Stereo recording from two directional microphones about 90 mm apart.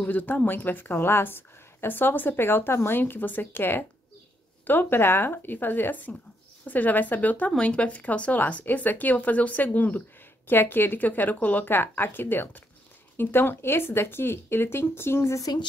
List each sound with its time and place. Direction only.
0.0 s a woman's voice: 20° left (ahead or behind); by 15.6 s 40° left (ahead or behind)